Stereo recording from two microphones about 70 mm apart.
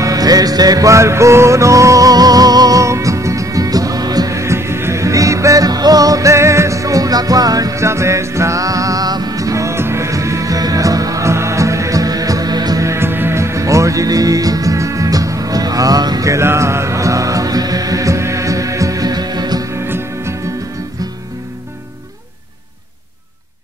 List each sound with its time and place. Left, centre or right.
0.0 s music: right
4.3 s music: right
7.8 s music: right
12.8 s music: right
16.3 s music: right
19.7 s music: right